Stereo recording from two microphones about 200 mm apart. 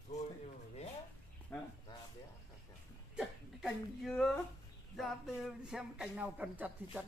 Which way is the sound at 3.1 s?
Centre (ahead or behind).